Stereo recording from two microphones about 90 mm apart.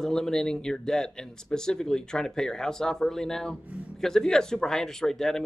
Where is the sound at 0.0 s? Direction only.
5° left (ahead or behind).